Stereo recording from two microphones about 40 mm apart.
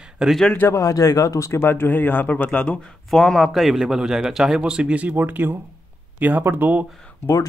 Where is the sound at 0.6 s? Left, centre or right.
Left.